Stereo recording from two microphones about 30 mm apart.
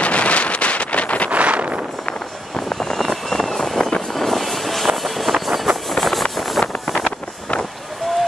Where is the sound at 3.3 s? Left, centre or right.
Centre.